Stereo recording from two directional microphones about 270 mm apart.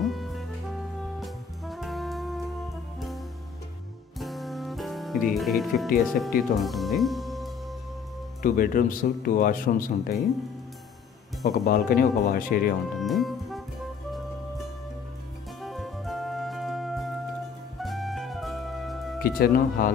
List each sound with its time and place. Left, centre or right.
0.0 s music: centre
4.2 s music: centre
5.9 s speech: centre
8.4 s speech: left
11.5 s speech: left
13.0 s music: centre
15.6 s music: centre
19.2 s speech: left